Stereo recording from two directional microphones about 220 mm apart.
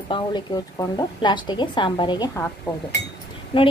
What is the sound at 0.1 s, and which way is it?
A woman's voice, 20° left (ahead or behind).